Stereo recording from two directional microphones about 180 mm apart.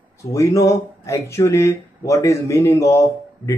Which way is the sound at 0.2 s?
15° left (ahead or behind).